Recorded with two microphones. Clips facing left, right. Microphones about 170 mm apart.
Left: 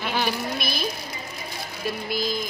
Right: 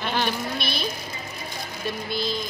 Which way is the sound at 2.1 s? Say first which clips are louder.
Left 1 dB; 10° left (ahead or behind).